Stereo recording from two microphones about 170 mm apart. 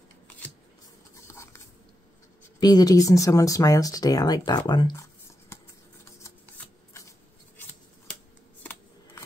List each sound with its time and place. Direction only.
1.2 s biting: 15° left (ahead or behind)
2.6 s speech: 25° left (ahead or behind)
6.9 s a sound: 20° left (ahead or behind)